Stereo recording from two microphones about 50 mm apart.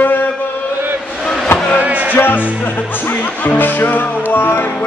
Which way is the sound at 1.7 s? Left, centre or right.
Right.